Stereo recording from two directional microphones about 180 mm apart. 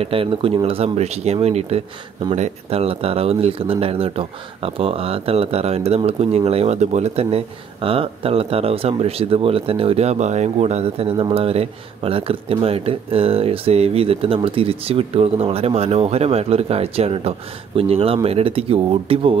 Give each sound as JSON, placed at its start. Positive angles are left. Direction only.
{"t": 0.0, "sound": "speech", "side_deg": -30}